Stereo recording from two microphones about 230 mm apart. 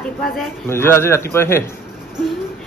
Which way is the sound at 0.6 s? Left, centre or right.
Centre.